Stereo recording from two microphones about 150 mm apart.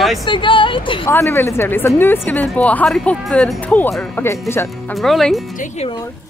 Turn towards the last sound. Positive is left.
turn(degrees=0)  # may be behind; listen again after turning